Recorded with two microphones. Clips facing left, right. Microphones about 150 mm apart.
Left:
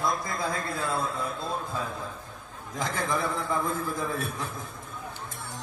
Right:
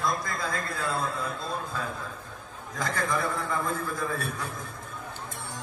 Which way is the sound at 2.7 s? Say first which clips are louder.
Even; 25° left (ahead or behind).